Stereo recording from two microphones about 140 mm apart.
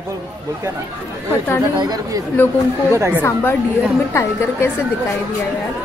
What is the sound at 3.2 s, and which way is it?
A woman's voice, 15° left (ahead or behind).